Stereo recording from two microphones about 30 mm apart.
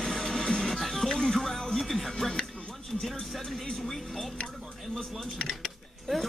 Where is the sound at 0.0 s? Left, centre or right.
Centre.